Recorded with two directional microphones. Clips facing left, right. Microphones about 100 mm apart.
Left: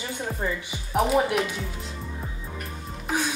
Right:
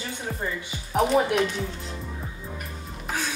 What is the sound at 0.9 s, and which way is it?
Speech, centre (ahead or behind).